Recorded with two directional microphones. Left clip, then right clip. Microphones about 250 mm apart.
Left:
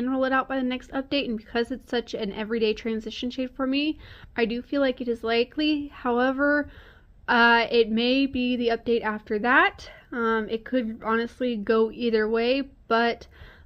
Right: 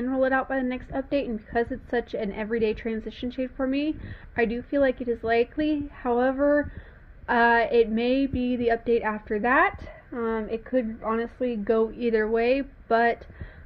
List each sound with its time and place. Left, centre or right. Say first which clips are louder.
0.0 s speech: even; left